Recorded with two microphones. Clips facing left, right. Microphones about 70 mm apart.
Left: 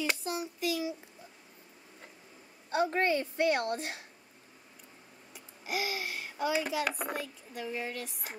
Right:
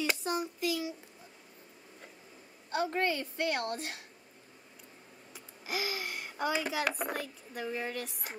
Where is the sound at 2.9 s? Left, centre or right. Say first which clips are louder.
Left 3 dB; left.